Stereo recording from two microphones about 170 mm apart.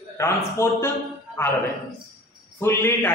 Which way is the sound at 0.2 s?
15° left (ahead or behind).